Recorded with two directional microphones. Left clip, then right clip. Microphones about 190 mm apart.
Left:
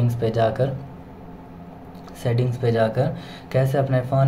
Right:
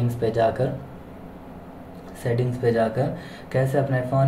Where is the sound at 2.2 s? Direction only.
30° left (ahead or behind).